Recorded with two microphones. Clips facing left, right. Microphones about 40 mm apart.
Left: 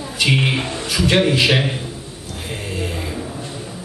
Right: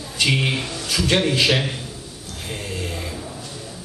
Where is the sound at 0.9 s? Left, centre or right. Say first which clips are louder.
Left 3 dB; centre.